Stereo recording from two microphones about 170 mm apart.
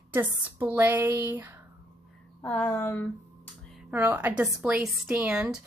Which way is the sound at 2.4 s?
10° left (ahead or behind).